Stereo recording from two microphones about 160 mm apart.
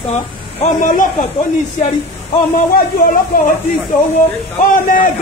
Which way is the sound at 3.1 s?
60° left (ahead or behind).